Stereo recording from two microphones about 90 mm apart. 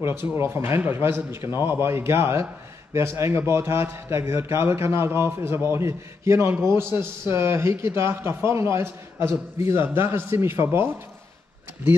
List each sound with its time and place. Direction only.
0.0 s a man's voice: 30° right (ahead or behind)